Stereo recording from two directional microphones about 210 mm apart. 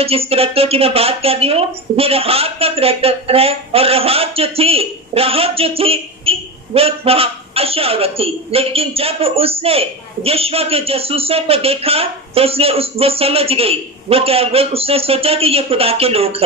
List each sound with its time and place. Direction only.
0.0 s speech: 30° right (ahead or behind)